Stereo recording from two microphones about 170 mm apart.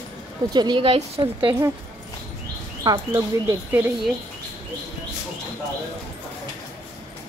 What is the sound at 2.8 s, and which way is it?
A woman's voice, 20° right (ahead or behind).